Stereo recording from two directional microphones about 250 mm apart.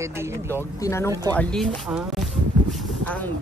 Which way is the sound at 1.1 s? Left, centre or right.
Centre.